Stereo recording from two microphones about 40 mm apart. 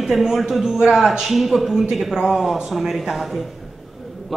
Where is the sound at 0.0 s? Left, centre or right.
Centre.